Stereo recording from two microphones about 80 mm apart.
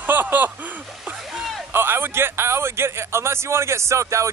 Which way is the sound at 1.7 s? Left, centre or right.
Right.